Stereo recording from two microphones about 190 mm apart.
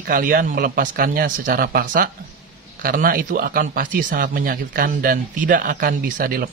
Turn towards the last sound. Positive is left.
turn(degrees=-50)  # may be behind; listen again after turning